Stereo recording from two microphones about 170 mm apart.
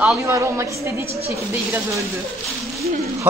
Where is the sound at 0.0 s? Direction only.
15° right (ahead or behind).